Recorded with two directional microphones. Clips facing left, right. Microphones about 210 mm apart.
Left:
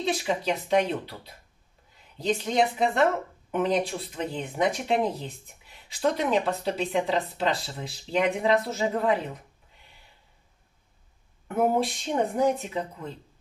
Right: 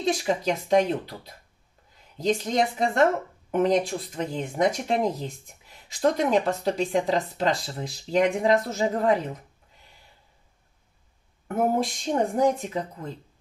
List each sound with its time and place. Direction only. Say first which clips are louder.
0.0 s speech: right 2 dB; 45° right (ahead or behind)
11.4 s speech: even; 45° right (ahead or behind)